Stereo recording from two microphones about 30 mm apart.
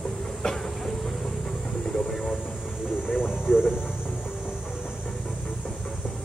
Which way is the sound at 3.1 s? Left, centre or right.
Right.